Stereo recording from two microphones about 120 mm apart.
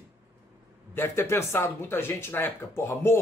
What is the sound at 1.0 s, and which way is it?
Speech, 20° left (ahead or behind).